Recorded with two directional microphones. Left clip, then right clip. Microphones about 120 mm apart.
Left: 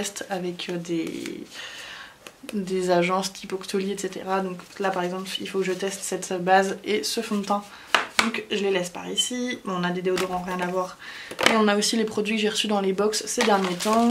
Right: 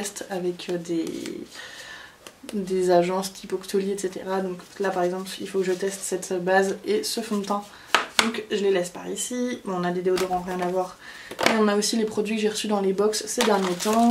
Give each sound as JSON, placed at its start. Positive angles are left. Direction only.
{"t": 0.0, "sound": "speech", "side_deg": 15}
{"t": 2.6, "sound": "speech", "side_deg": 15}
{"t": 13.6, "sound": "speech", "side_deg": -15}